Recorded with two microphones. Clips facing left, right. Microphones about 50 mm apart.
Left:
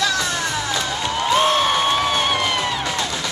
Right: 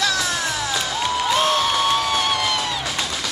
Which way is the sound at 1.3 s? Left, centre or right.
Centre.